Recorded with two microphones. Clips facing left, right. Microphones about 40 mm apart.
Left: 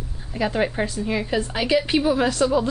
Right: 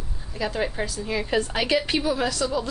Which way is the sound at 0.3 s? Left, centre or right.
Left.